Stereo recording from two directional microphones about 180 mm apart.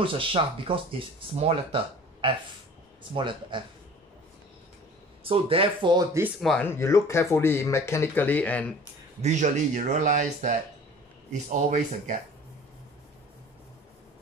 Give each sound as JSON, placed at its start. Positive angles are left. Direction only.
{"t": 0.0, "sound": "speech", "side_deg": -30}
{"t": 3.0, "sound": "speech", "side_deg": -25}
{"t": 5.2, "sound": "speech", "side_deg": -30}
{"t": 6.4, "sound": "speech", "side_deg": 5}
{"t": 6.7, "sound": "speech", "side_deg": 15}
{"t": 9.2, "sound": "speech", "side_deg": -40}